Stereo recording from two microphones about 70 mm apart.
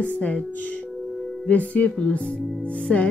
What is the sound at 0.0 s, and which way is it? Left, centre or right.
Music, left.